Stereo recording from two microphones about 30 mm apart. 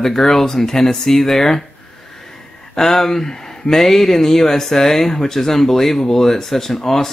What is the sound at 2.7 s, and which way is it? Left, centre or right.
Speech, centre.